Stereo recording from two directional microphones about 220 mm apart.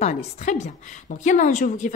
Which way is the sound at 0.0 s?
35° left (ahead or behind).